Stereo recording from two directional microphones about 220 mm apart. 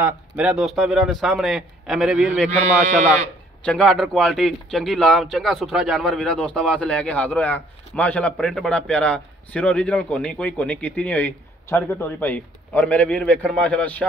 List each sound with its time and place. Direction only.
0.0 s a man's voice: 5° right (ahead or behind)
2.5 s speech: 30° right (ahead or behind)
3.6 s a man's voice: 5° left (ahead or behind)